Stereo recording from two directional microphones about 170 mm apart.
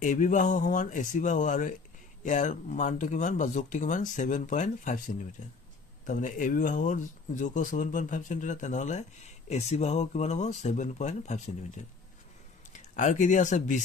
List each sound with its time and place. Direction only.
0.0 s speech: 50° left (ahead or behind)
12.9 s speech: 45° left (ahead or behind)